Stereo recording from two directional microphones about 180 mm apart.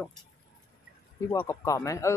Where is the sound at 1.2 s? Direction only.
15° left (ahead or behind).